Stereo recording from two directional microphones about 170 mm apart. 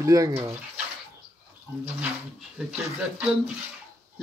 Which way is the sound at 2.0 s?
5° right (ahead or behind).